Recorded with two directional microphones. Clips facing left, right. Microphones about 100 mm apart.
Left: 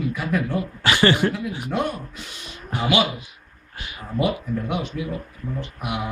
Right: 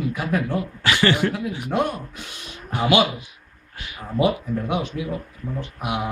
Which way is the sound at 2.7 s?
40° right (ahead or behind).